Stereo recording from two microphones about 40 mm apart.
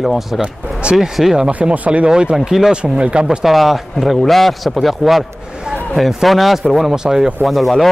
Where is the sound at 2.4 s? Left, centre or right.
Centre.